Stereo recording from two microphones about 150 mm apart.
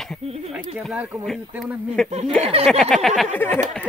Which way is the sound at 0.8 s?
Centre (ahead or behind).